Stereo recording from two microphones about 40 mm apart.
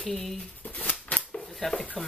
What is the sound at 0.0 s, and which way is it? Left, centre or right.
Speech, centre.